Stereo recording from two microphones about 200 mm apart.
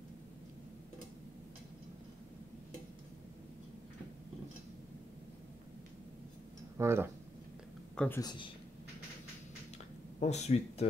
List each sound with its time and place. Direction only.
6.8 s speech: 15° right (ahead or behind)
7.9 s a sound: 5° left (ahead or behind)
8.2 s a man's voice: 20° left (ahead or behind)
10.2 s speech: 35° left (ahead or behind)